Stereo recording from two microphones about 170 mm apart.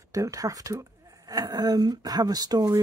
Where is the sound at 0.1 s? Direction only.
20° right (ahead or behind).